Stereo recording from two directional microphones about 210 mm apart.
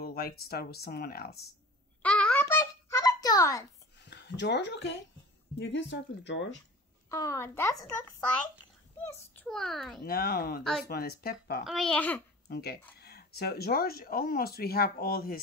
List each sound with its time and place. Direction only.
0.0 s speech: 45° left (ahead or behind)
2.0 s a sound: 5° left (ahead or behind)
4.0 s speech: 55° left (ahead or behind)
7.1 s a child's voice: 15° left (ahead or behind)
10.0 s speech: 45° left (ahead or behind)
10.6 s a child's voice: centre (ahead or behind)
10.9 s speech: 50° left (ahead or behind)
11.6 s a child's voice: centre (ahead or behind)
12.4 s speech: 50° left (ahead or behind)